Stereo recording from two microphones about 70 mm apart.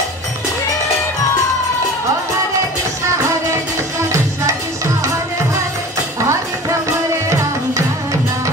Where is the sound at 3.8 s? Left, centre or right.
Right.